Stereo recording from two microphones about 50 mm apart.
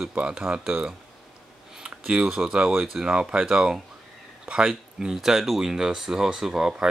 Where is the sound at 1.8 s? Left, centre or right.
Centre.